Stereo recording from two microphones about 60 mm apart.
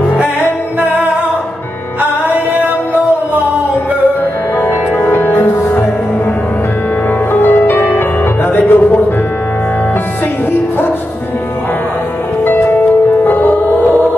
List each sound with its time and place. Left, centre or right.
2.0 s music: right
5.1 s music: left
7.3 s music: left
12.4 s music: left